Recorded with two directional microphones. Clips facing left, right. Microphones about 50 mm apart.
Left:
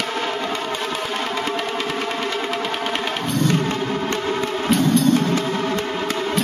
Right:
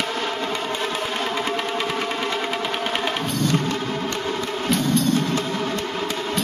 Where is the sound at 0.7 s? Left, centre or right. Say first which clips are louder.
Left 1 dB; centre.